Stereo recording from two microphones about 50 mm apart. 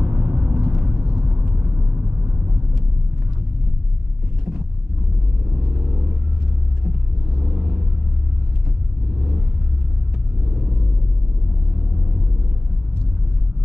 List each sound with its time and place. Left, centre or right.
0.0 s vehicle: right
1.1 s vehicle: centre
5.5 s vehicle: right
7.3 s vehicle: right